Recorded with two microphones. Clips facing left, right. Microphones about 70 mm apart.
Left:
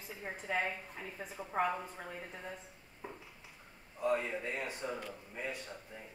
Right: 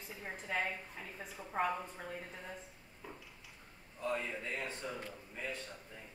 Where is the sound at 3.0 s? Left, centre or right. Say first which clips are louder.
Left 3 dB; left.